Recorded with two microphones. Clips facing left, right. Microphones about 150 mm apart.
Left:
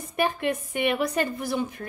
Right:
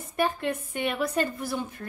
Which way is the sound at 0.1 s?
15° left (ahead or behind).